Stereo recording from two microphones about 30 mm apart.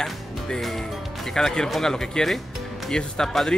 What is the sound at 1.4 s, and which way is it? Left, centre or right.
Speech, left.